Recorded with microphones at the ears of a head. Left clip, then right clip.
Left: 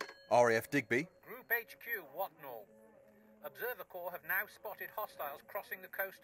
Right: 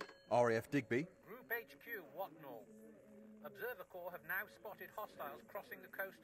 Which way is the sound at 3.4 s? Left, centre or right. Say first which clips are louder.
Left 5 dB; left.